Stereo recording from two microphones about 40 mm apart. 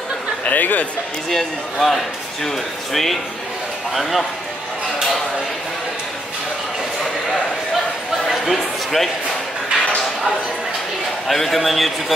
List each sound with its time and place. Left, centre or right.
0.5 s speech: left
1.3 s speech: centre
8.3 s a sound: centre
11.2 s speech: centre